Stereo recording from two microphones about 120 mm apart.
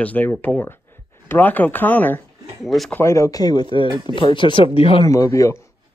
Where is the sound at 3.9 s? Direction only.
40° right (ahead or behind).